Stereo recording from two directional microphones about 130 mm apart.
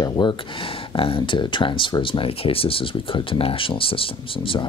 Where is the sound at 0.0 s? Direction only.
35° left (ahead or behind).